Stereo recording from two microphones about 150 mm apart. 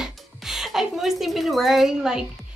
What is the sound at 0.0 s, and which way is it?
Music, centre (ahead or behind).